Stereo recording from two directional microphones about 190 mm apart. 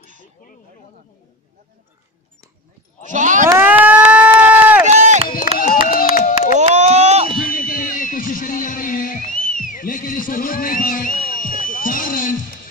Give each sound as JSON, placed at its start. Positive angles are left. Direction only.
{"t": 3.1, "sound": "speech", "side_deg": -40}
{"t": 3.4, "sound": "run", "side_deg": -10}
{"t": 4.8, "sound": "chop", "side_deg": -40}
{"t": 5.6, "sound": "a sound", "side_deg": 45}
{"t": 6.6, "sound": "a sound", "side_deg": -35}
{"t": 7.5, "sound": "music", "side_deg": 45}